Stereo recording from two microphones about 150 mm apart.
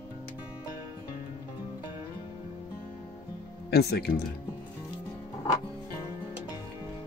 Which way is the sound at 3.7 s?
90° left.